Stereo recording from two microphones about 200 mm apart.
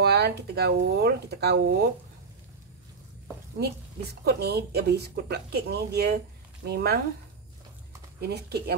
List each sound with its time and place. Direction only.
0.0 s a woman's voice: 55° right (ahead or behind)
3.5 s a woman's voice: 55° right (ahead or behind)
8.2 s a woman's voice: 55° right (ahead or behind)